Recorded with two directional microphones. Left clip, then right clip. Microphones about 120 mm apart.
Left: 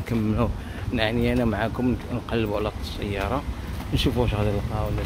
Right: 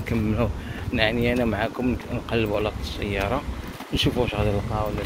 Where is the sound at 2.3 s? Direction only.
50° left (ahead or behind).